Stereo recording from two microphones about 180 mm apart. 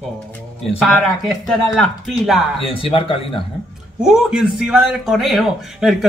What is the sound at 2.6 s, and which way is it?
Speech, 30° left (ahead or behind).